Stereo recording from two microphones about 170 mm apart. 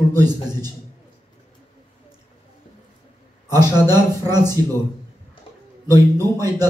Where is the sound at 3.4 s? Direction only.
25° right (ahead or behind).